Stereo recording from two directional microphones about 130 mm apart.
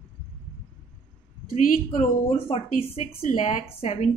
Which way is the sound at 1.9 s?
65° left (ahead or behind).